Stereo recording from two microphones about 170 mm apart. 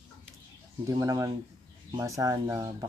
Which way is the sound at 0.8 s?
20° right (ahead or behind).